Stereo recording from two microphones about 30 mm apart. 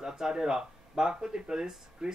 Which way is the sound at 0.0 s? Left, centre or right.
Centre.